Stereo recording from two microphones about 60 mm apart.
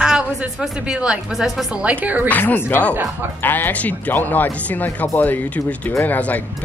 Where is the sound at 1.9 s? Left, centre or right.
Right.